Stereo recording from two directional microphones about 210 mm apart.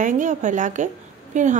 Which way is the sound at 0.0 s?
35° right (ahead or behind).